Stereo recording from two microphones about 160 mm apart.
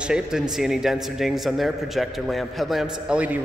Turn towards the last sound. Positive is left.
turn(degrees=-10)  # may be behind; listen again after turning